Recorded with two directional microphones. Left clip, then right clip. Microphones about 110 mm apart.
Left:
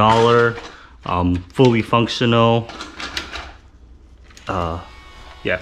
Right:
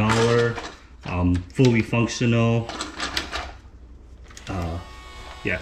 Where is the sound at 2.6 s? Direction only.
5° right (ahead or behind).